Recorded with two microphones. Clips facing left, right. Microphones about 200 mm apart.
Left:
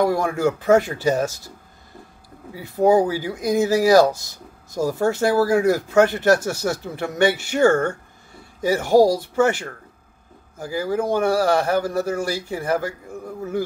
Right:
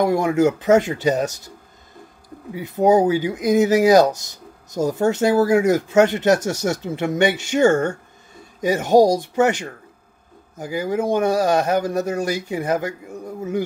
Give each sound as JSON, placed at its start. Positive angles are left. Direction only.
{"t": 0.0, "sound": "speech", "side_deg": -20}
{"t": 2.5, "sound": "speech", "side_deg": -20}